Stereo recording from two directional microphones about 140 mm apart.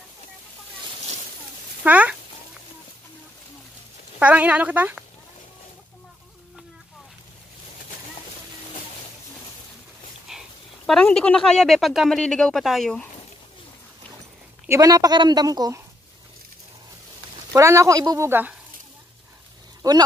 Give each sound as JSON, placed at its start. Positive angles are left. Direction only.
{"t": 1.9, "sound": "speech", "side_deg": -10}
{"t": 4.2, "sound": "speech", "side_deg": -10}
{"t": 10.3, "sound": "dog", "side_deg": -5}
{"t": 10.9, "sound": "speech", "side_deg": 5}
{"t": 14.7, "sound": "a woman's voice", "side_deg": -25}
{"t": 17.6, "sound": "a woman's voice", "side_deg": -20}
{"t": 19.8, "sound": "a woman's voice", "side_deg": -25}